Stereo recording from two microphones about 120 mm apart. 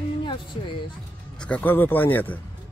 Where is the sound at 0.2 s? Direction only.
40° left (ahead or behind).